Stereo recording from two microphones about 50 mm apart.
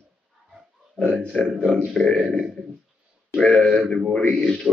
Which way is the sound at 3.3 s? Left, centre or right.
Left.